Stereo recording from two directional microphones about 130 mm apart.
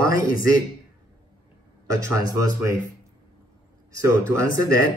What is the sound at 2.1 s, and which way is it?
Speech, 25° right (ahead or behind).